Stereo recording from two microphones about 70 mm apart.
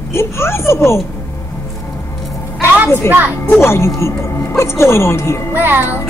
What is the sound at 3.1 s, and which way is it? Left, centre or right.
Speech, right.